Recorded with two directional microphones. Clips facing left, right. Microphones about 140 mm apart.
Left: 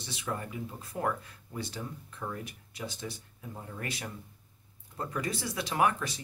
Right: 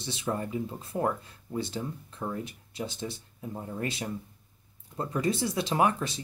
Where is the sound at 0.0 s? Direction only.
25° right (ahead or behind).